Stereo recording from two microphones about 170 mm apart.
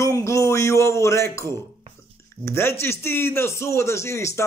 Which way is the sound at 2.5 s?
15° left (ahead or behind).